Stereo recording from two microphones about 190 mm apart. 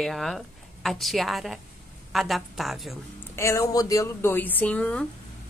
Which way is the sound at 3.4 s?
15° left (ahead or behind).